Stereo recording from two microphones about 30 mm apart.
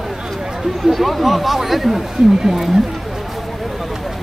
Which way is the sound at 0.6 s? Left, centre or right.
Centre.